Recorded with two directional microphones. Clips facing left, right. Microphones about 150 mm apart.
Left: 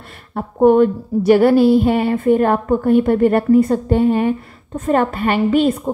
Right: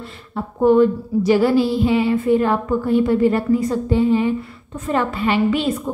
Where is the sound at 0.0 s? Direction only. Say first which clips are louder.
Left 1 dB; 50° left (ahead or behind).